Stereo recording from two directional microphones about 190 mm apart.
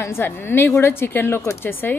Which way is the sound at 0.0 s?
10° left (ahead or behind).